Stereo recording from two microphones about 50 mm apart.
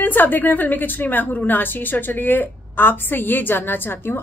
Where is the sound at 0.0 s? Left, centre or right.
Left.